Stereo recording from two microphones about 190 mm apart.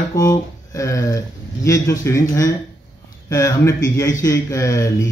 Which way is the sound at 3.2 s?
15° left (ahead or behind).